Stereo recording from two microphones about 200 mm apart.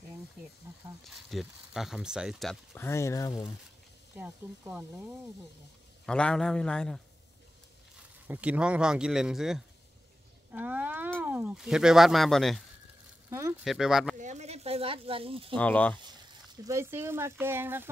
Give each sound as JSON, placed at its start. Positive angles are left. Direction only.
{"t": 1.0, "sound": "speech", "side_deg": 0}
{"t": 2.7, "sound": "speech", "side_deg": 10}
{"t": 4.2, "sound": "speech", "side_deg": -5}
{"t": 6.0, "sound": "speech", "side_deg": 5}
{"t": 8.3, "sound": "speech", "side_deg": -5}
{"t": 13.3, "sound": "speech", "side_deg": -15}
{"t": 13.7, "sound": "speech", "side_deg": 0}
{"t": 14.1, "sound": "speech", "side_deg": -35}
{"t": 15.5, "sound": "speech", "side_deg": 5}
{"t": 16.6, "sound": "speech", "side_deg": -15}